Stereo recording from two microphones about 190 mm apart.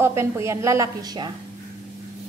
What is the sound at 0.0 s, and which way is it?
A woman's voice, 15° right (ahead or behind).